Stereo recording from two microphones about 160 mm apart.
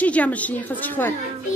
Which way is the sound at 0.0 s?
10° left (ahead or behind).